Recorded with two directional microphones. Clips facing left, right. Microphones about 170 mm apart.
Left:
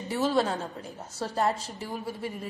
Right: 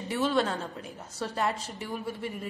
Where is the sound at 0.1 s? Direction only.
35° left (ahead or behind).